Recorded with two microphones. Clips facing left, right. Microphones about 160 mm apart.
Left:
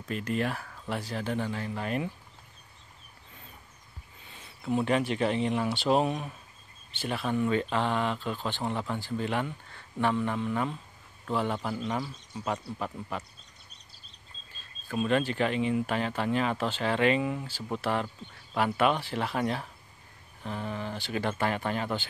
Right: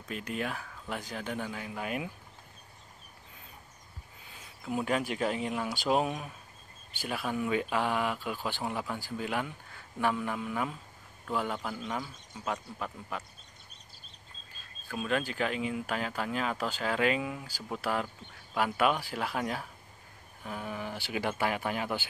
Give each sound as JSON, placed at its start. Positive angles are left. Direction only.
{"t": 0.1, "sound": "speech", "side_deg": 0}
{"t": 4.3, "sound": "speech", "side_deg": -5}
{"t": 14.9, "sound": "speech", "side_deg": 0}